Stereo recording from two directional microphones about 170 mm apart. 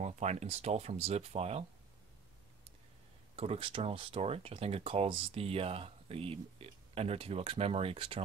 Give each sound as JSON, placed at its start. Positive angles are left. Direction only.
{"t": 0.0, "sound": "speech", "side_deg": -40}
{"t": 3.3, "sound": "speech", "side_deg": -35}